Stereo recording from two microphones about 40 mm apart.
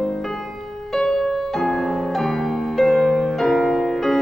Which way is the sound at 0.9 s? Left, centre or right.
Centre.